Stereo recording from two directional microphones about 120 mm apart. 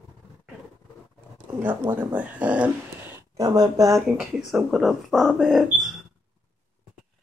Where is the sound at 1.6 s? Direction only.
15° right (ahead or behind).